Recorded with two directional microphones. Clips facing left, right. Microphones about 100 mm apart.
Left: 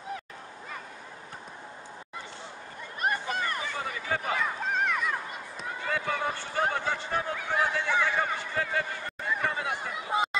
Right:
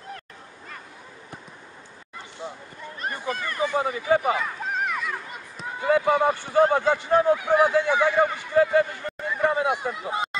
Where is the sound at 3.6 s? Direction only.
15° right (ahead or behind).